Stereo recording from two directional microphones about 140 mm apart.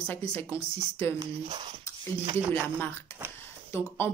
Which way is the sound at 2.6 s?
15° left (ahead or behind).